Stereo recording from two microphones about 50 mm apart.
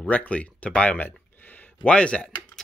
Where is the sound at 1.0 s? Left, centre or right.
Left.